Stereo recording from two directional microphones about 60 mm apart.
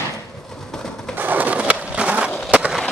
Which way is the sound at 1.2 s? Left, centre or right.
Right.